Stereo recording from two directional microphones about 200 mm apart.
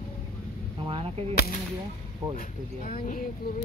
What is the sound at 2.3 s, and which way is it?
Speech, 45° left (ahead or behind).